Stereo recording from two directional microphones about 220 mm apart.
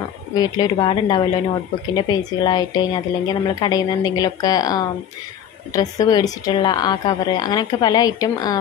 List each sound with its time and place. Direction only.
0.3 s a woman's voice: 20° left (ahead or behind)